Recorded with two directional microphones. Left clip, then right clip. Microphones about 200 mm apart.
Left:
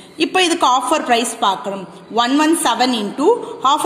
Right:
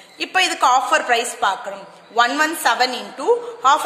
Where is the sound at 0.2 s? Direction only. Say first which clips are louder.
Left 2 dB; 5° left (ahead or behind).